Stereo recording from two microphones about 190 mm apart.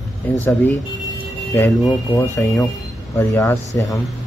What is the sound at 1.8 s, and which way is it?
Speech, 15° left (ahead or behind).